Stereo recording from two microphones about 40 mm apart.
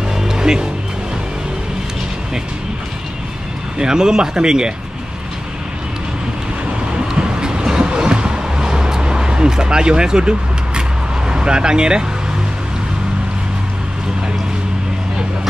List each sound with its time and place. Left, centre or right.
0.2 s music: centre
3.7 s speech: centre
7.2 s music: right
11.2 s speech: right